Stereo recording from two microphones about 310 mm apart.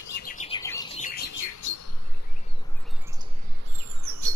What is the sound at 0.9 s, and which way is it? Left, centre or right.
Bird, left.